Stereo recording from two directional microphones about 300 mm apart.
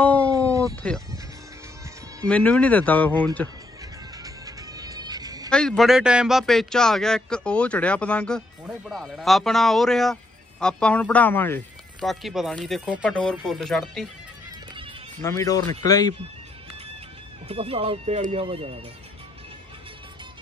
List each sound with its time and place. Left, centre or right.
0.0 s a sound: centre
0.3 s a sound: centre
2.2 s a man's voice: centre
4.2 s music: centre
5.5 s a man's voice: centre
15.2 s speech: centre
17.5 s speech: centre